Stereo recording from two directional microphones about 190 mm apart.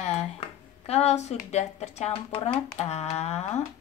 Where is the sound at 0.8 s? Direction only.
35° left (ahead or behind).